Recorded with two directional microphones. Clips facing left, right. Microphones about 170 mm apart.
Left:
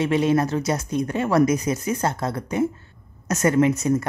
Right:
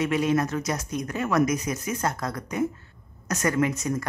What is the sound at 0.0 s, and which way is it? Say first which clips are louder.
Speech: left 4 dB; 30° left (ahead or behind).